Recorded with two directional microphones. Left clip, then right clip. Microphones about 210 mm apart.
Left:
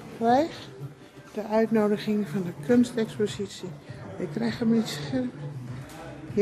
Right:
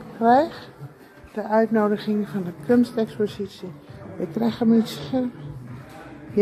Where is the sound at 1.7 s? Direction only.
25° left (ahead or behind).